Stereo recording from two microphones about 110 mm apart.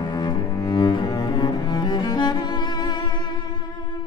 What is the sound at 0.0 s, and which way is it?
Cello, 40° left (ahead or behind).